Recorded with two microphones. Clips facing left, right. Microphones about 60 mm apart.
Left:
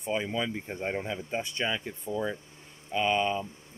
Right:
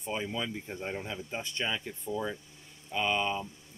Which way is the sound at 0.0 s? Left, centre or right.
Left.